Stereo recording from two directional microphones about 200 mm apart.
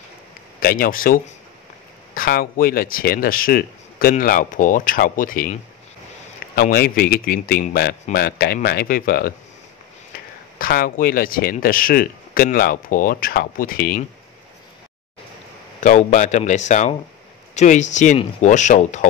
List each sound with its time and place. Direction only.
0.6 s speech: 45° left (ahead or behind)
6.5 s speech: 50° left (ahead or behind)
10.6 s speech: 45° left (ahead or behind)
15.8 s speech: 40° left (ahead or behind)